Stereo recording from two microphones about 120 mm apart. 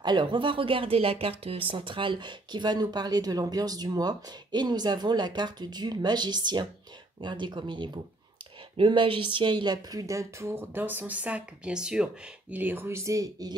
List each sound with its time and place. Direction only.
0.0 s speech: 40° right (ahead or behind)